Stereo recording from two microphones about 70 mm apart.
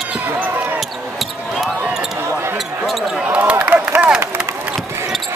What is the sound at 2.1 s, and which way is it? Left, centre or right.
Basketball bounce, right.